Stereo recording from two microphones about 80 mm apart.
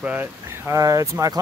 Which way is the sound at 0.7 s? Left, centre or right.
Right.